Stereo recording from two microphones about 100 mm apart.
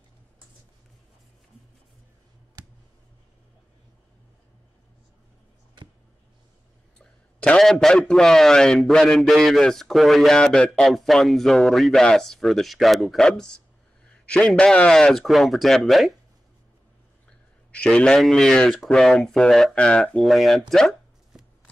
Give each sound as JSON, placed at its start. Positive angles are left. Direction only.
{"t": 7.0, "sound": "a man's voice", "side_deg": 10}
{"t": 17.3, "sound": "speech", "side_deg": 10}
{"t": 20.7, "sound": "a sound", "side_deg": 5}